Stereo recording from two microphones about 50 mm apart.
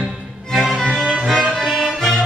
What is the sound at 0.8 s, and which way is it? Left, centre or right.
Music, centre.